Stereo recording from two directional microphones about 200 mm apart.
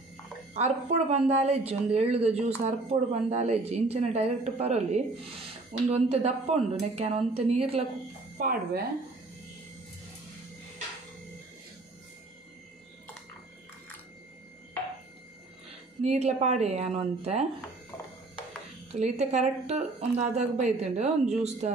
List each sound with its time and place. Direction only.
0.6 s speech: 35° right (ahead or behind)
8.4 s speech: 45° right (ahead or behind)
16.0 s speech: 35° right (ahead or behind)
18.9 s speech: 35° right (ahead or behind)